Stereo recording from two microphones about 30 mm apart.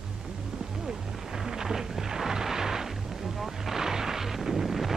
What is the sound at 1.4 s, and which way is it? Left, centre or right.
Music, centre.